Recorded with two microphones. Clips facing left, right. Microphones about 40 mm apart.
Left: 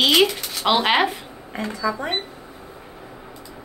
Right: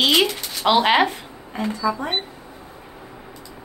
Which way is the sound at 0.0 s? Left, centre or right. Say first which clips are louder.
Left 1 dB; centre.